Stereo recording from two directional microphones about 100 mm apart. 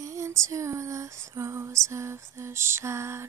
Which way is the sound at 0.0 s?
30° right (ahead or behind).